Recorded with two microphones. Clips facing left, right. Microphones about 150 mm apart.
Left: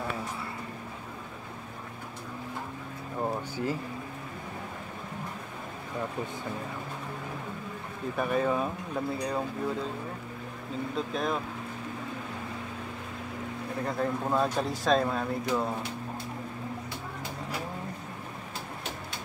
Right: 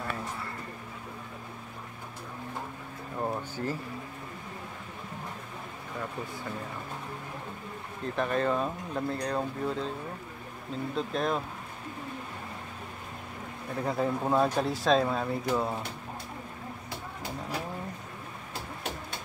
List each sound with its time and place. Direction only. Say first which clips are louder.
3.2 s a sound: left 1 dB; 10° left (ahead or behind)
8.2 s speech: even; 5° left (ahead or behind)
11.0 s speech: right 1 dB; centre (ahead or behind)
13.8 s speech: right 2 dB; 5° right (ahead or behind)